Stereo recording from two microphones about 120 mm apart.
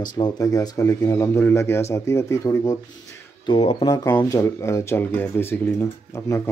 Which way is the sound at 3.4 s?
45° left (ahead or behind).